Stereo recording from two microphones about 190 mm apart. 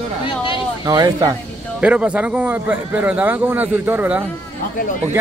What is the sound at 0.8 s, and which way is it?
Speech, 20° right (ahead or behind).